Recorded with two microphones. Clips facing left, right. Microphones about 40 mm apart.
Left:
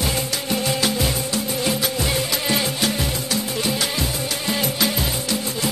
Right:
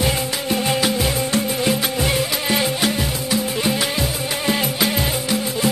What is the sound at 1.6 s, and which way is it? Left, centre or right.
Music, centre.